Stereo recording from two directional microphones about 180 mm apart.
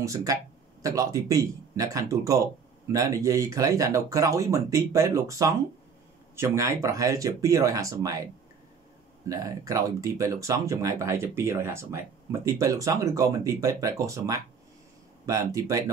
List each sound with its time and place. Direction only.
0.0 s speech: 20° right (ahead or behind)
9.3 s speech: 20° right (ahead or behind)